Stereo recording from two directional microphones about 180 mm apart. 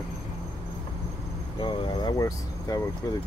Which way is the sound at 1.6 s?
25° left (ahead or behind).